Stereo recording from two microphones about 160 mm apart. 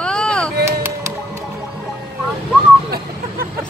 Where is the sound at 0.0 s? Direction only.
5° left (ahead or behind).